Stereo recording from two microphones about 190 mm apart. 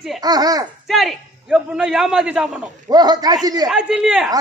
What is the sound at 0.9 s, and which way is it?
A man's voice, centre (ahead or behind).